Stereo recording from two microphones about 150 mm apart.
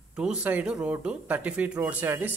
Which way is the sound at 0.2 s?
10° right (ahead or behind).